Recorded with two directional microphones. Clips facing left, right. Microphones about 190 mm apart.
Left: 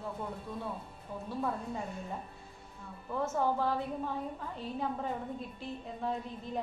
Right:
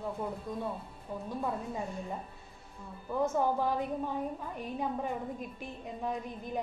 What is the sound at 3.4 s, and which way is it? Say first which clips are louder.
A woman's voice: right 1 dB; 15° right (ahead or behind).